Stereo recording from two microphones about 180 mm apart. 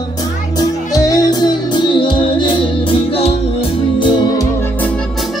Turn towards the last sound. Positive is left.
turn(degrees=25)  # may be behind; listen again after turning